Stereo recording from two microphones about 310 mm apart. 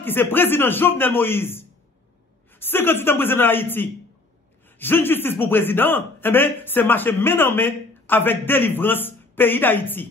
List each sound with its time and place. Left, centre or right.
0.0 s a man's voice: centre